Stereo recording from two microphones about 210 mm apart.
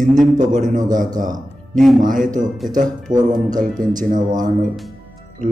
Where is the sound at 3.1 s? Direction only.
20° right (ahead or behind).